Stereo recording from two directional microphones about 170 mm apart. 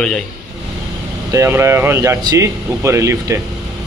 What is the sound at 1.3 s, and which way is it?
Speech, 15° right (ahead or behind).